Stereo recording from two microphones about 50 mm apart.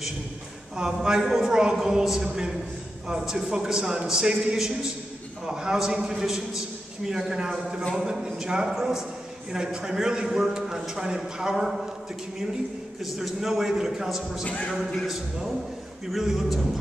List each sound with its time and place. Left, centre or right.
0.7 s a man's voice: centre
13.0 s a man's voice: centre
14.4 s speech: left
15.0 s a man's voice: centre